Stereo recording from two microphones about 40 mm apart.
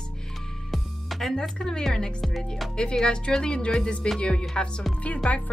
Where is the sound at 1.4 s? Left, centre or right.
Centre.